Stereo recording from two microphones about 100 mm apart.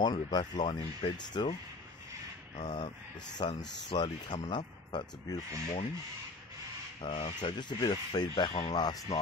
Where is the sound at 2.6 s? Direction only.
45° left (ahead or behind).